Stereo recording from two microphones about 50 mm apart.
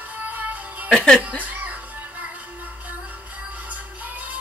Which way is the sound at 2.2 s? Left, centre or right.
Right.